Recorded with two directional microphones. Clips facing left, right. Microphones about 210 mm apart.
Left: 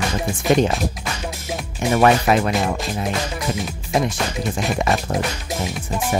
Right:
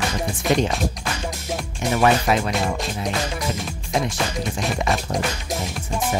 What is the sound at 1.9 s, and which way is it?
Speech, 50° left (ahead or behind).